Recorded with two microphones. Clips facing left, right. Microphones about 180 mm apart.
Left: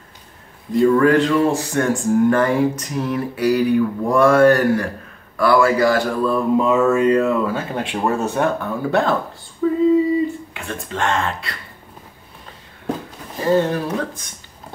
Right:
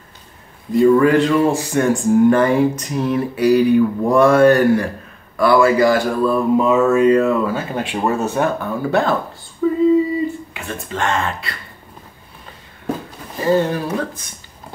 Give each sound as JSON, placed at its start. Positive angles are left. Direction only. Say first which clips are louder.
{"t": 0.7, "sound": "speech", "louder": "right 2 dB", "side_deg": -10}
{"t": 9.6, "sound": "female singing", "louder": "right 1 dB", "side_deg": 0}
{"t": 10.5, "sound": "speech", "louder": "right 1 dB", "side_deg": -5}
{"t": 13.4, "sound": "speech", "louder": "right 1 dB", "side_deg": 0}